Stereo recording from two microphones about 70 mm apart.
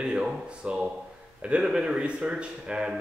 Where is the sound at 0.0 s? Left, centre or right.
Centre.